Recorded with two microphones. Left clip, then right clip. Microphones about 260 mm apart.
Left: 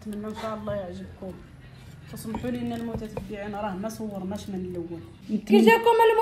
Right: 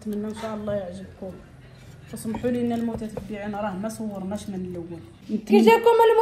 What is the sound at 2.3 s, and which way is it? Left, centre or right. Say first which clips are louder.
Speech: right 6 dB; left.